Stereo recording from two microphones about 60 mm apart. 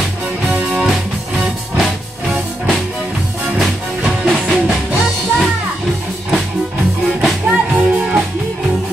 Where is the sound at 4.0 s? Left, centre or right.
Centre.